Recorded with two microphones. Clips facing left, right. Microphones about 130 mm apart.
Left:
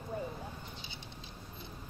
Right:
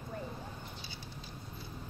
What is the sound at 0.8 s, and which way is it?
Patter, 20° left (ahead or behind).